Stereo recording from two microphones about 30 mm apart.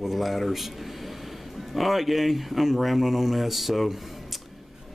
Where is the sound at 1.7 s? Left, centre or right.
Centre.